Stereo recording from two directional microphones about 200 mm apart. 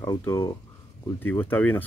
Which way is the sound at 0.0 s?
15° left (ahead or behind).